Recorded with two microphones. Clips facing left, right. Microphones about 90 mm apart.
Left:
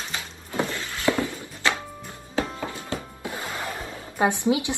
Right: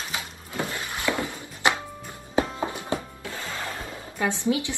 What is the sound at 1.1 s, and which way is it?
Music, 20° right (ahead or behind).